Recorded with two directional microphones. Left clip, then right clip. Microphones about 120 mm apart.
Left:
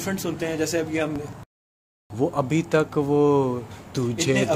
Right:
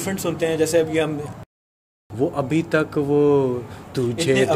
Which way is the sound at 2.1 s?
55° left (ahead or behind).